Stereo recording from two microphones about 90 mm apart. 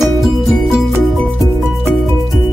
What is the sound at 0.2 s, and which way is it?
Music, centre (ahead or behind).